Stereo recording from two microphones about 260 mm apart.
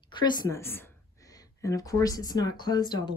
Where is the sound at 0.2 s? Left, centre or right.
Centre.